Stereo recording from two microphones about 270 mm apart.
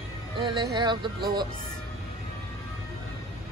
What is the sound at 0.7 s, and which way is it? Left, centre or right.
Speech, centre.